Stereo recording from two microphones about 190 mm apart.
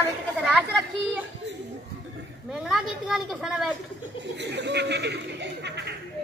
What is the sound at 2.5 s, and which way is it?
A woman's voice, centre (ahead or behind).